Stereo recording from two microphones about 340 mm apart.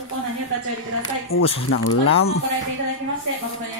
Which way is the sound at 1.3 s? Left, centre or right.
Left.